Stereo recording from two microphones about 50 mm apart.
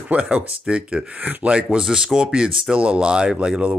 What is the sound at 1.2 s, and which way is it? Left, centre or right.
Speech, right.